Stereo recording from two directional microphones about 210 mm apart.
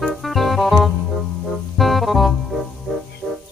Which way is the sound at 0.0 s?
Centre (ahead or behind).